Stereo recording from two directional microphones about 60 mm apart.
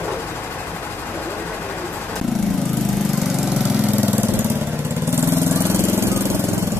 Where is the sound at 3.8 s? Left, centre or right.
Right.